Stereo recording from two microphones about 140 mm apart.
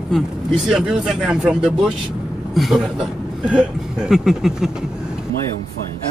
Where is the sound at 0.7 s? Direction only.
5° right (ahead or behind).